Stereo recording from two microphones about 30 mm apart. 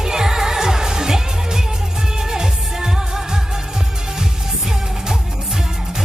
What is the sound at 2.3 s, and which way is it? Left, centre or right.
Music, centre.